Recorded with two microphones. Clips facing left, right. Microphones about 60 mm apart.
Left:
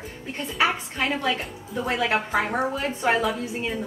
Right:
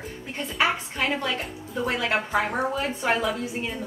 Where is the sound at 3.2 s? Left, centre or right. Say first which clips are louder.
Left 1 dB; centre.